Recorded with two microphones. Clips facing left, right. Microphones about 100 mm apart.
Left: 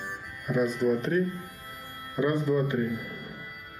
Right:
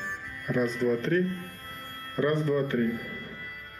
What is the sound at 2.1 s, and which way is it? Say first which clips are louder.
Speech: even; 10° left (ahead or behind).